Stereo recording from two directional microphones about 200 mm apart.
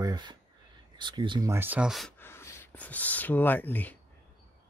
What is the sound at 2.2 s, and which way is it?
Speech, 10° left (ahead or behind).